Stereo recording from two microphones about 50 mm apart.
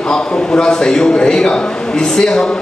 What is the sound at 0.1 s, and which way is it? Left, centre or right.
A man's voice, centre.